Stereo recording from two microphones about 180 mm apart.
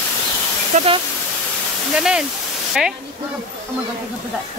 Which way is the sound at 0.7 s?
40° right (ahead or behind).